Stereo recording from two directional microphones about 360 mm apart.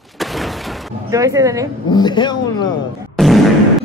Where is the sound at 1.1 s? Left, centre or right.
Centre.